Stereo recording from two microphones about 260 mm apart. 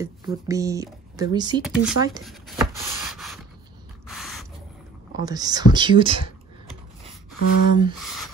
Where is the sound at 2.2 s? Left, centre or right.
Centre.